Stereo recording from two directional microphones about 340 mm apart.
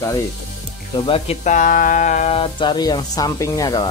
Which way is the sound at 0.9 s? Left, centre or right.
Centre.